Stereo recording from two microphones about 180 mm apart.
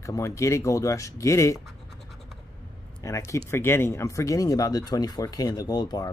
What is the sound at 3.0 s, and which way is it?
Speech, 15° left (ahead or behind).